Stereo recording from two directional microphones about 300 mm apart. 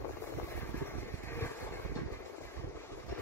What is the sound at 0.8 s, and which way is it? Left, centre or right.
Vehicle, centre.